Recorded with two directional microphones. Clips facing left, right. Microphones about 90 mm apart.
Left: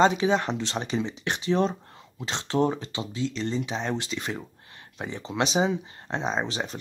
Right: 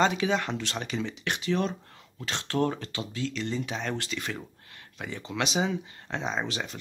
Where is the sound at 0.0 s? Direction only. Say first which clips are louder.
Left 4 dB; 25° left (ahead or behind).